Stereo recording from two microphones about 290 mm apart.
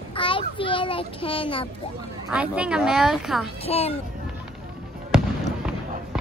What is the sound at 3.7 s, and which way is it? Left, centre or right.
Speech, left.